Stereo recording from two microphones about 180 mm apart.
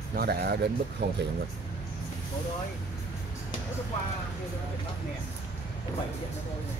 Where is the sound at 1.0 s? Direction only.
70° right (ahead or behind).